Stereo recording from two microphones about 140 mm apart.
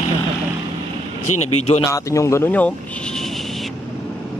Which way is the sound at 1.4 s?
50° left (ahead or behind).